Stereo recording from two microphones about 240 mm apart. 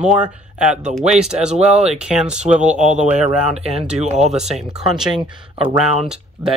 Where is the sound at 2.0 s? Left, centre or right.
Centre.